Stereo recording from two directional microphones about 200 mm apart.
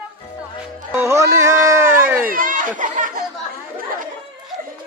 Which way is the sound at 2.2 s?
45° right (ahead or behind).